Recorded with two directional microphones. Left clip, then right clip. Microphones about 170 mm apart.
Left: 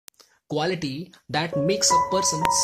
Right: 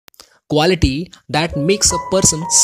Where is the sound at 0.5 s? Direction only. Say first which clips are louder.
Right 11 dB; 45° right (ahead or behind).